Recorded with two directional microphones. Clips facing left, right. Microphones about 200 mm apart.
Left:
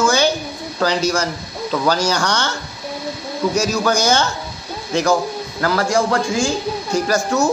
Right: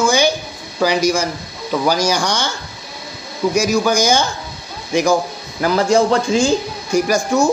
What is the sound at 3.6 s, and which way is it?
Speech, 10° right (ahead or behind).